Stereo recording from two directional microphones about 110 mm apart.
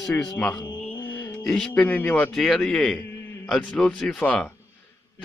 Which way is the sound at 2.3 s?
5° left (ahead or behind).